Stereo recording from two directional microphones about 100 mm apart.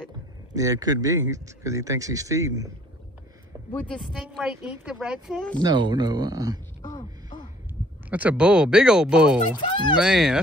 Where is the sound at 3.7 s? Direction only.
10° left (ahead or behind).